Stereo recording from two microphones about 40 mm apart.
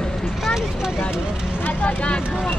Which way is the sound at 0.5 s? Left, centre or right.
Centre.